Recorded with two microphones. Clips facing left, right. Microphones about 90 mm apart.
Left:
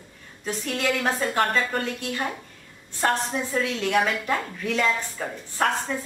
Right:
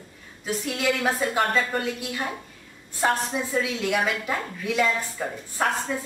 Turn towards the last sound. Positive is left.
turn(degrees=-5)  # may be behind; listen again after turning